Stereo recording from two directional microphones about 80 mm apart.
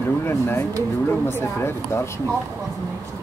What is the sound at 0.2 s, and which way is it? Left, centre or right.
Speech, left.